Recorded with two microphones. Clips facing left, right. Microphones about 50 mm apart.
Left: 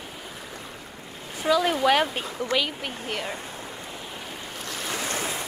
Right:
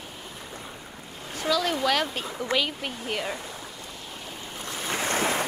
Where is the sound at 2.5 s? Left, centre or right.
Centre.